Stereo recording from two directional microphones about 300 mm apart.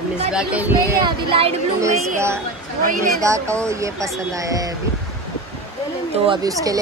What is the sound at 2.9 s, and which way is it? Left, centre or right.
Speech, right.